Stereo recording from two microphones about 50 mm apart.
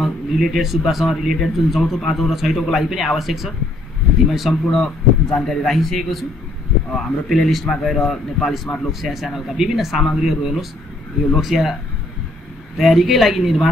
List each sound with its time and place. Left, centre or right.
0.0 s speech: centre
4.6 s speech: centre
12.7 s speech: centre